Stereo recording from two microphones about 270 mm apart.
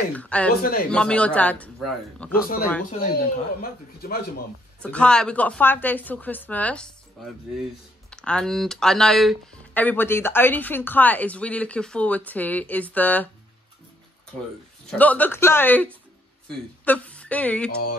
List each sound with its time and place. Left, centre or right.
0.1 s speech: centre
2.8 s speech: left
4.8 s speech: centre
14.9 s speech: centre